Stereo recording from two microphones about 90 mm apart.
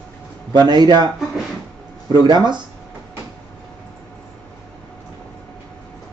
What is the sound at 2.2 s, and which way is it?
Speech, 55° right (ahead or behind).